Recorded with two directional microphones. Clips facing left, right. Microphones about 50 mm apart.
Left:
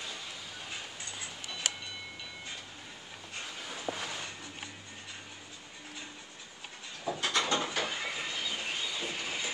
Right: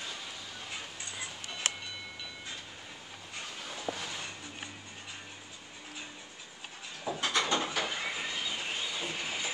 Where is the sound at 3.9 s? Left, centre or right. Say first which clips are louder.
Left 1 dB; centre.